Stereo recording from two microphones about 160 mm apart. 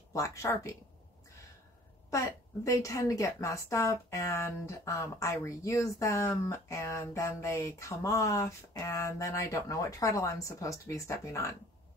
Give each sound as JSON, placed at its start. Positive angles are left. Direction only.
{"t": 0.1, "sound": "a woman's voice", "side_deg": 20}
{"t": 2.0, "sound": "a woman's voice", "side_deg": 20}